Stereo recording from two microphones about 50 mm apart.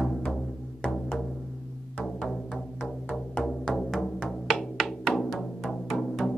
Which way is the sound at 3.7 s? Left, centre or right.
Centre.